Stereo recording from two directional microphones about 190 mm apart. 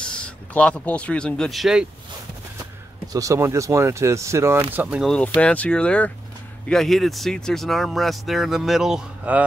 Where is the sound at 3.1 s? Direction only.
15° right (ahead or behind).